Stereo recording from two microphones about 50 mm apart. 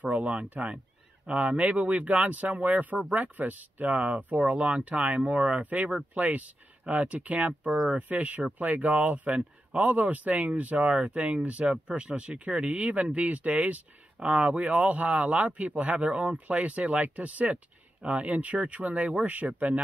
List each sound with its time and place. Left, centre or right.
0.0 s speech: right